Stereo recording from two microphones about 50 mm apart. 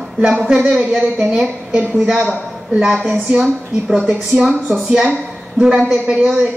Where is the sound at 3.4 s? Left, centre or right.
Centre.